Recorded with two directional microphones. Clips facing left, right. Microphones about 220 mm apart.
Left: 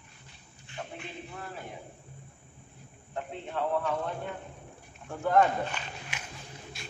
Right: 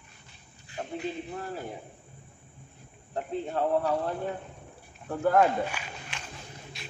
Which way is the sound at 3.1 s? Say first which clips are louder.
Right 5 dB; 35° right (ahead or behind).